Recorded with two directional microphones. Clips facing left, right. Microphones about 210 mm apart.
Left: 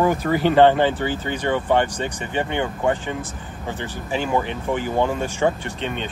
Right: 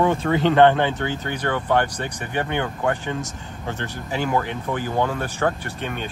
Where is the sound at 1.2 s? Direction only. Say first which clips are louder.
Left 3 dB; 15° left (ahead or behind).